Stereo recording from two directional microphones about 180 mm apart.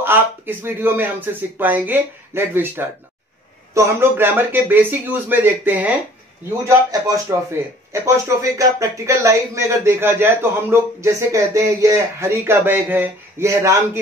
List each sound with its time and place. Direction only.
0.0 s speech: 10° right (ahead or behind)
6.9 s speech: 20° right (ahead or behind)